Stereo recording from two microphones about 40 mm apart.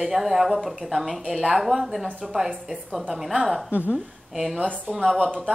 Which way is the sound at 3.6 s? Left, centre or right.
Right.